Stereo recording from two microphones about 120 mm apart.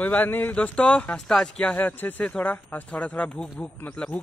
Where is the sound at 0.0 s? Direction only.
15° left (ahead or behind).